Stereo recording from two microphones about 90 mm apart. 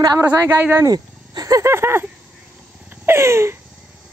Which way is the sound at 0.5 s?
25° right (ahead or behind).